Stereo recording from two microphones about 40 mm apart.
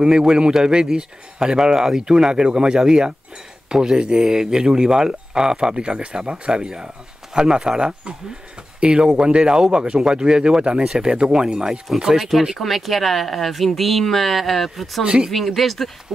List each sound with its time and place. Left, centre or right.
0.0 s speech: centre
12.2 s speech: centre
15.0 s speech: centre
15.3 s speech: centre